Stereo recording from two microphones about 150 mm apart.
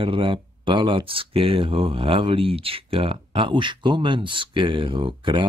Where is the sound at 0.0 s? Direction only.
35° right (ahead or behind).